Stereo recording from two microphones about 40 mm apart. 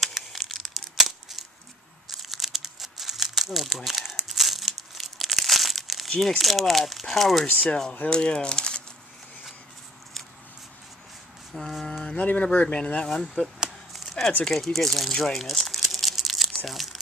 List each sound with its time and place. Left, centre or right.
0.0 s crumpling: centre
6.0 s speech: centre
7.6 s speech: centre
11.5 s speech: centre
12.2 s speech: left
13.9 s a sound: centre
14.4 s speech: centre
15.4 s crumpling: centre